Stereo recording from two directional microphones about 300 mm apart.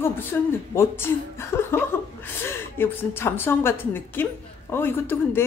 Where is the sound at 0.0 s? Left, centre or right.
Centre.